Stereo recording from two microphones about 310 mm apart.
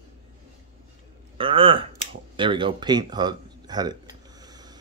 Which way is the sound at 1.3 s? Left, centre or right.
Centre.